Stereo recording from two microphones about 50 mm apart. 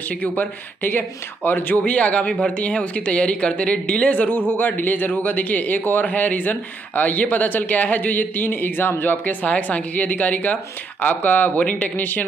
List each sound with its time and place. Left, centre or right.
0.2 s speech: left
1.8 s speech: left
4.3 s a man's voice: left